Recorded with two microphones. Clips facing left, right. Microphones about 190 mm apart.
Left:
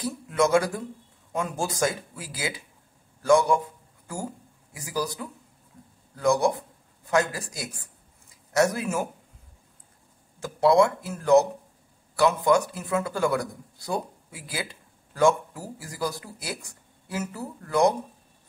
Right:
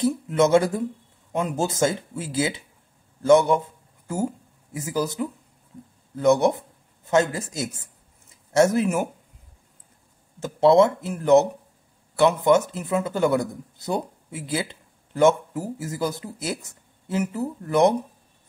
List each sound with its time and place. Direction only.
0.0 s a man's voice: 25° right (ahead or behind)
10.4 s speech: 25° right (ahead or behind)